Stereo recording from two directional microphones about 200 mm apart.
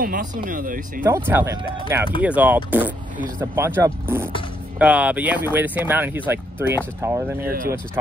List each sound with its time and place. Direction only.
0.0 s speech: 45° right (ahead or behind)
1.0 s speech: 10° right (ahead or behind)